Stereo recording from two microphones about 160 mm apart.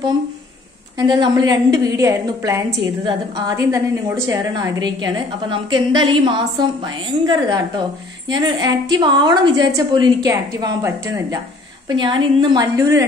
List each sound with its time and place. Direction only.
0.9 s a woman's voice: 25° right (ahead or behind)
12.0 s a woman's voice: 30° right (ahead or behind)